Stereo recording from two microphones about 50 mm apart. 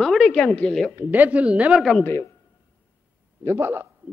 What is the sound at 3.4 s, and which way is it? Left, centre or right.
Speech, right.